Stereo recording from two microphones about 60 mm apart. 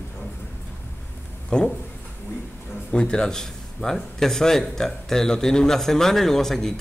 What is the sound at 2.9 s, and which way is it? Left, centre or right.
A man's voice, centre.